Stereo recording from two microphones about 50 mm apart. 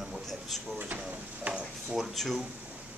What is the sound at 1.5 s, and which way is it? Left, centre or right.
Speech, centre.